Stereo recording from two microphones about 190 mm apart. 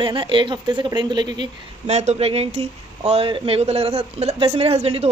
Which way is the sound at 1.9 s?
35° right (ahead or behind).